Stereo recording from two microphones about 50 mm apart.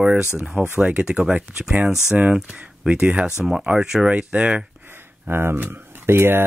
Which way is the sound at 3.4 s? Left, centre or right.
Centre.